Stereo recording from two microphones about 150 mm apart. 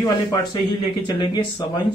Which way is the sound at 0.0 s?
25° left (ahead or behind).